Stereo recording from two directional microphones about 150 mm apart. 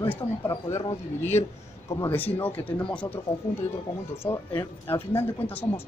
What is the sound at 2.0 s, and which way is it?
Speech, 10° left (ahead or behind).